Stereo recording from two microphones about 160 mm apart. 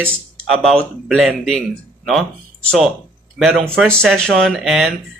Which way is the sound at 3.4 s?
Centre (ahead or behind).